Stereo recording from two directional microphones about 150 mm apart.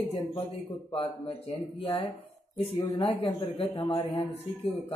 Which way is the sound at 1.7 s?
40° left (ahead or behind).